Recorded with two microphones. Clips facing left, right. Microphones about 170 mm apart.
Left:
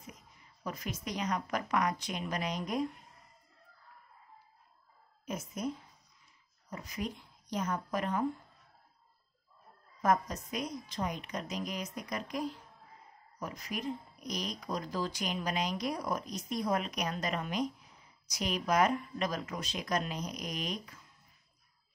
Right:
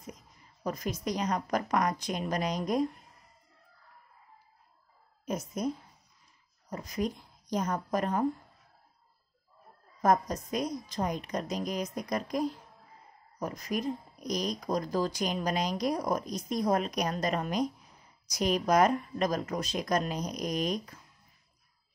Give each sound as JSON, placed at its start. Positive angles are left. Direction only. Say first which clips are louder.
{"t": 0.7, "sound": "speech", "louder": "right 6 dB", "side_deg": -40}
{"t": 5.2, "sound": "speech", "louder": "right 5 dB", "side_deg": -40}
{"t": 6.7, "sound": "speech", "louder": "right 6 dB", "side_deg": -40}
{"t": 10.0, "sound": "speech", "louder": "right 4 dB", "side_deg": -40}